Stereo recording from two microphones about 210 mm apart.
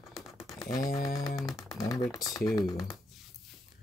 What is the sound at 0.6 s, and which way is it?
Mantra, 15° left (ahead or behind).